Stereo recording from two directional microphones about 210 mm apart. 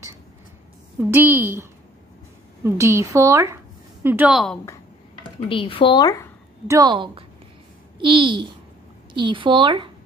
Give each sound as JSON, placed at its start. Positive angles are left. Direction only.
{"t": 0.9, "sound": "a woman's voice", "side_deg": -10}
{"t": 5.5, "sound": "speech", "side_deg": 25}
{"t": 6.7, "sound": "a woman's voice", "side_deg": -20}